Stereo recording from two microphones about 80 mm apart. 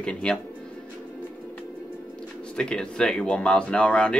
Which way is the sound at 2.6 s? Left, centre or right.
Centre.